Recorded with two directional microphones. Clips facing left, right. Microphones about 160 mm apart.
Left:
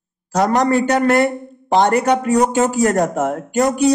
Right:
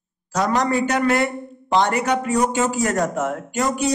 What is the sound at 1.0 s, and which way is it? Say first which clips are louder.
A man's voice: left 5 dB; 45° left (ahead or behind).